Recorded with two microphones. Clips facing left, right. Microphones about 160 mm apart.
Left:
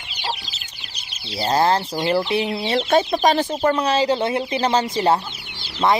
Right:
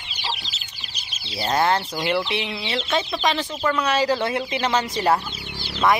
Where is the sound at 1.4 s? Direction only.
30° left (ahead or behind); by 3.7 s 45° left (ahead or behind).